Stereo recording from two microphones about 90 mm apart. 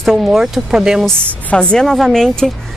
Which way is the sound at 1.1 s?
10° left (ahead or behind).